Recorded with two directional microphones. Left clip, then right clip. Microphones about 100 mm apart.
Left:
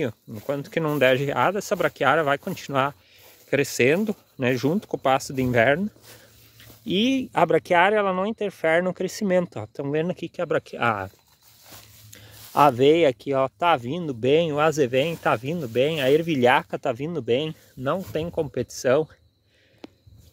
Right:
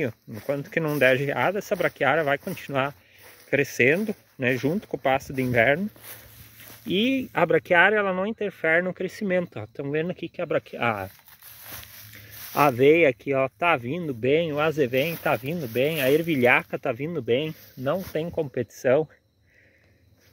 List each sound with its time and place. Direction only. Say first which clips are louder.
0.5 s speech: left 1 dB; 25° left (ahead or behind)
3.7 s speech: even; 45° left (ahead or behind)
4.9 s speech: left 2 dB; 35° left (ahead or behind)
6.9 s speech: left 1 dB; 30° left (ahead or behind)
12.5 s speech: left 1 dB; 20° left (ahead or behind)
14.2 s speech: left 3 dB; 35° left (ahead or behind)